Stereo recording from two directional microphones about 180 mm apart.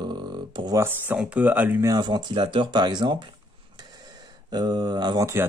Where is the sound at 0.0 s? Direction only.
25° right (ahead or behind).